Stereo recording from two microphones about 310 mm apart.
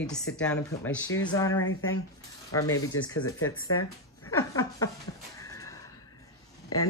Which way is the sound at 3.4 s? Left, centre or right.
Left.